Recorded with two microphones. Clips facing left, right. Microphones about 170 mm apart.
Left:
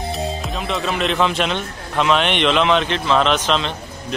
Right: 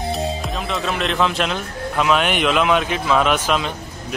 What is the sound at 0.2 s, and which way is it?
Speech, centre (ahead or behind).